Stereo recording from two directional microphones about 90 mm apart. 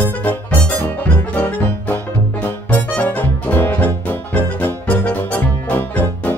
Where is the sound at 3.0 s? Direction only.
15° left (ahead or behind).